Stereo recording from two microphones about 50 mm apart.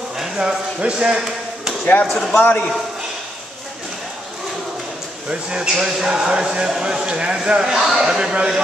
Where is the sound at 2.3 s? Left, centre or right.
Left.